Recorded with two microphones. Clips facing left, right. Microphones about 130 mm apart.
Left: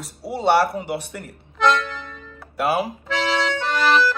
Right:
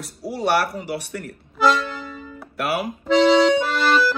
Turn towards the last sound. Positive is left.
turn(degrees=0)  # may be behind; listen again after turning